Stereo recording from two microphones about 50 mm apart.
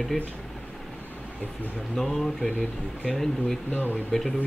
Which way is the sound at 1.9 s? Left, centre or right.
Centre.